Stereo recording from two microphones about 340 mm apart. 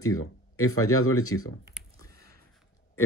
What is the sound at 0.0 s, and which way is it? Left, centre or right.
Speech, left.